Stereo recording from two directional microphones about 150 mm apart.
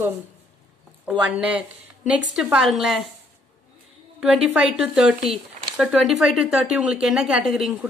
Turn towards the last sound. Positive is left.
turn(degrees=0)  # may be behind; listen again after turning